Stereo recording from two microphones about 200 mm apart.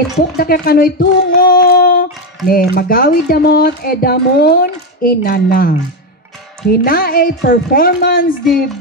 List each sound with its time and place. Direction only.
0.4 s speech: 50° left (ahead or behind)